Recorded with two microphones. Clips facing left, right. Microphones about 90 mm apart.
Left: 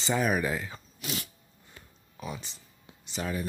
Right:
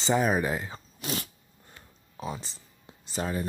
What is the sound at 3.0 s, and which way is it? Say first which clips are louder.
Speech: right 2 dB; 35° right (ahead or behind).